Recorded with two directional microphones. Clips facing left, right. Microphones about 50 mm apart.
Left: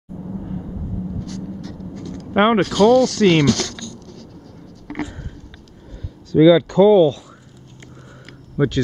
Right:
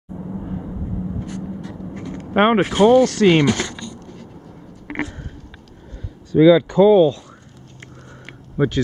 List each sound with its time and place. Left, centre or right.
0.1 s vehicle: centre
2.3 s speech: centre
2.6 s speech: right
3.2 s writing: centre
6.3 s speech: centre
8.5 s speech: centre